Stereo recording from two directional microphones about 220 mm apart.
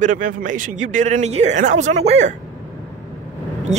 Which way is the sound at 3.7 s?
30° right (ahead or behind).